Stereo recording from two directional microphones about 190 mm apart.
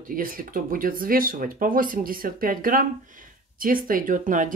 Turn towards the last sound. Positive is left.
turn(degrees=-45)  # may be behind; listen again after turning